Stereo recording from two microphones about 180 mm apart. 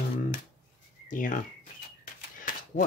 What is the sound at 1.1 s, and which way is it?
Speech, 45° left (ahead or behind).